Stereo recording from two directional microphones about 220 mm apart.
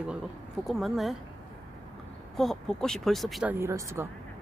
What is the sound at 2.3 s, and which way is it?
Speech, centre (ahead or behind).